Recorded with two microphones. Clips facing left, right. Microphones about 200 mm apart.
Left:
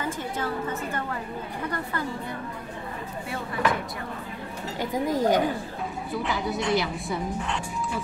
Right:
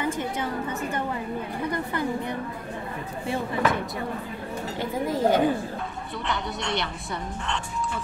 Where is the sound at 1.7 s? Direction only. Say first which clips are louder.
Right 4 dB; 20° right (ahead or behind).